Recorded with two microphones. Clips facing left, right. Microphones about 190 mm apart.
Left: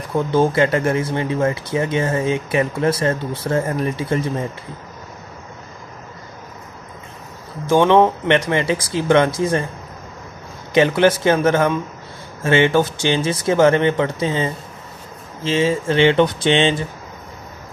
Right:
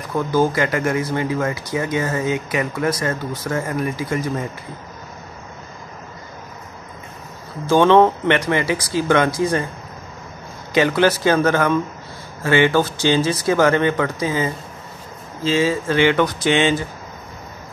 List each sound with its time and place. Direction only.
0.1 s speech: 25° left (ahead or behind)
7.6 s speech: 15° left (ahead or behind)
10.7 s speech: 25° left (ahead or behind)